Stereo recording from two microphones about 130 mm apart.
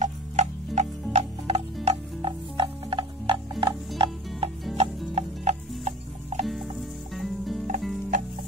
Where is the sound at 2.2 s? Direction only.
40° right (ahead or behind).